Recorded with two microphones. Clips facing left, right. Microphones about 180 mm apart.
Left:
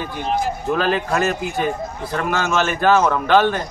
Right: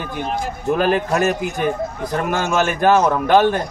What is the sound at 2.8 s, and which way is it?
Speech, 15° right (ahead or behind).